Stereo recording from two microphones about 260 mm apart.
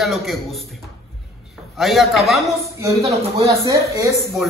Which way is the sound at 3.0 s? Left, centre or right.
Right.